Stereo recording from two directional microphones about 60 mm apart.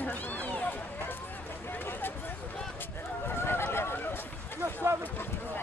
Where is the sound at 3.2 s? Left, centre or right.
Left.